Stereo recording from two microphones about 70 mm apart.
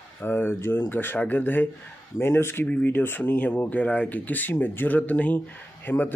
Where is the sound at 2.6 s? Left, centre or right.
Left.